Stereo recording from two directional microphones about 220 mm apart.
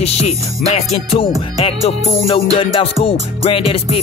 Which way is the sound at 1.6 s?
25° left (ahead or behind).